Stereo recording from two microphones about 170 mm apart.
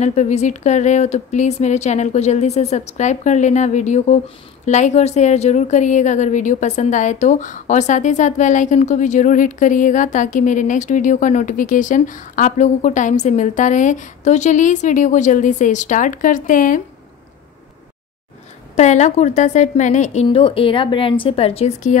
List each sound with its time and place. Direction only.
0.0 s a woman's voice: 40° left (ahead or behind)
18.8 s a woman's voice: 45° left (ahead or behind)
20.2 s a woman's voice: 30° left (ahead or behind)